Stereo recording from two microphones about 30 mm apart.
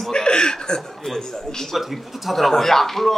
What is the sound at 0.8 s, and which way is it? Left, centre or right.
A man's voice, centre.